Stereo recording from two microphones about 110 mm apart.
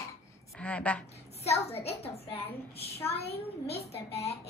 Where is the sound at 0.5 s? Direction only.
10° left (ahead or behind).